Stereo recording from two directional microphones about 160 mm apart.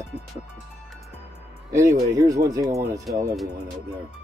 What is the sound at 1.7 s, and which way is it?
Speech, 20° right (ahead or behind).